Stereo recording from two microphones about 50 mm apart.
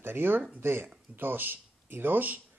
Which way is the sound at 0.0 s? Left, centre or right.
Right.